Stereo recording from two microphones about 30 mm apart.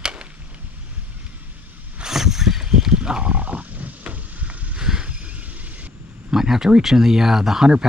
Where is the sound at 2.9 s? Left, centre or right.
Right.